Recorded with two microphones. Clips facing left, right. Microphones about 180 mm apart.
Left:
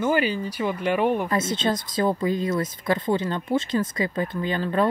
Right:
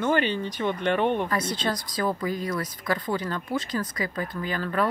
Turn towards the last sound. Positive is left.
turn(degrees=25)  # may be behind; listen again after turning